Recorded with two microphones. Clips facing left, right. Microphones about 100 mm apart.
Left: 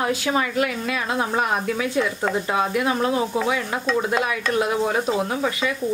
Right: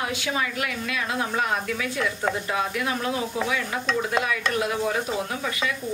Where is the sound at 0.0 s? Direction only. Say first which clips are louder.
Left 5 dB; 40° left (ahead or behind).